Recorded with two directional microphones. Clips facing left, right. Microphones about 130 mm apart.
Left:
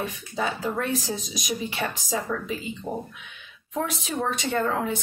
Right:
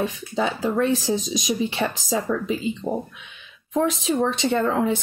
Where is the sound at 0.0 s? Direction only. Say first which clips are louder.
Right 5 dB; 25° right (ahead or behind).